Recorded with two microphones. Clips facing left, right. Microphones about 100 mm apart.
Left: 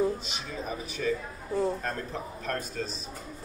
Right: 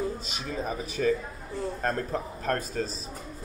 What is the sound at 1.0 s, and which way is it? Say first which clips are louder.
Speech: right 5 dB; 40° right (ahead or behind).